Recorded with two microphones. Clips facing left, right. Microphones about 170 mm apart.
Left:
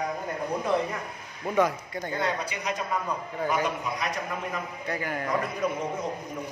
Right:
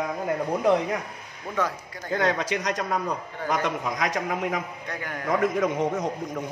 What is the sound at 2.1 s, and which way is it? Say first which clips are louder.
Speech: right 6 dB; 90° right.